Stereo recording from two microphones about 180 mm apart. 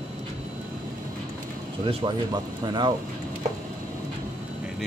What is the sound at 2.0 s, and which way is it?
Speech, 25° right (ahead or behind).